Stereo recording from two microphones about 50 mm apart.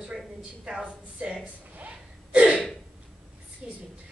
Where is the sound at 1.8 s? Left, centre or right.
Right.